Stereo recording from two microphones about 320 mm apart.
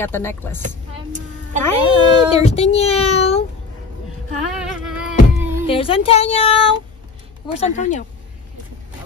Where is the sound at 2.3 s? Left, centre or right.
Centre.